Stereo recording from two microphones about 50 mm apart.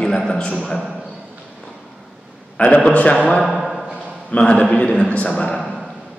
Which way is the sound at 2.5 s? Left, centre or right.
Left.